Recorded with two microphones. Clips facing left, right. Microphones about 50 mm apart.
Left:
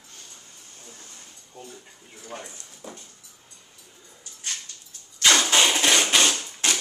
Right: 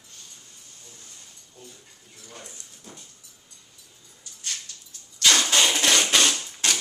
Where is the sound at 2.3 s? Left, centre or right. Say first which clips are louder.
Left 7 dB; left.